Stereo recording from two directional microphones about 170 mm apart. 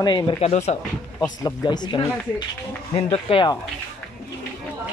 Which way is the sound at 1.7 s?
25° left (ahead or behind).